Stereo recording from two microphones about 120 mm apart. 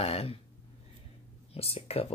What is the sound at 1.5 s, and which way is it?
Speech, 55° left (ahead or behind).